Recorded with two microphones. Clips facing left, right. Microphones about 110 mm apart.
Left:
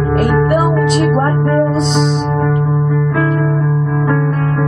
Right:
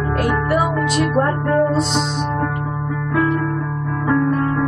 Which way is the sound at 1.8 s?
20° left (ahead or behind).